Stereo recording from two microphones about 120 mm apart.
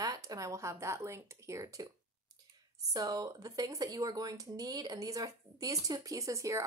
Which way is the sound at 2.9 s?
35° right (ahead or behind).